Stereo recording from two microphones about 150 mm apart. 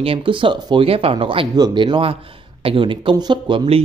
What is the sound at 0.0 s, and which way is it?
A man's voice, 35° right (ahead or behind).